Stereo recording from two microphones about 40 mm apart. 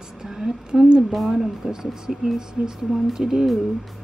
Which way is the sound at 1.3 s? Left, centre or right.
Centre.